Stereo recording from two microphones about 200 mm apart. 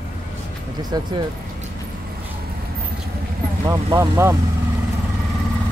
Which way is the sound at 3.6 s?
15° right (ahead or behind).